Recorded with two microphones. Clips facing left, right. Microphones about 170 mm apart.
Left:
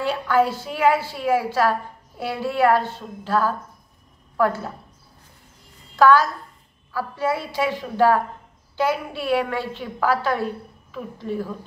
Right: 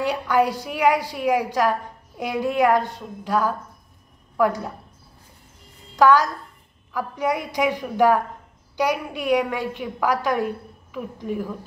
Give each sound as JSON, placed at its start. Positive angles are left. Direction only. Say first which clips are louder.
{"t": 0.0, "sound": "a woman's voice", "louder": "even", "side_deg": -15}
{"t": 5.9, "sound": "a woman's voice", "louder": "left 1 dB", "side_deg": -15}